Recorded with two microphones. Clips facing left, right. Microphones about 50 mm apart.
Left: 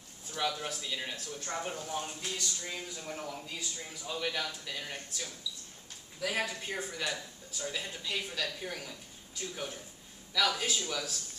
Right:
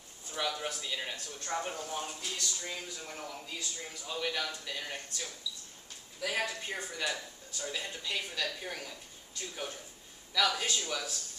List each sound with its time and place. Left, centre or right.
0.4 s speech: centre
10.3 s speech: centre